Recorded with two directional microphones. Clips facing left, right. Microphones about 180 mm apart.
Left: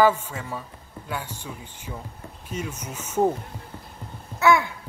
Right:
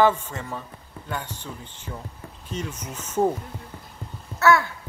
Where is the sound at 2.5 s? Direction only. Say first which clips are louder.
Even; 10° left (ahead or behind).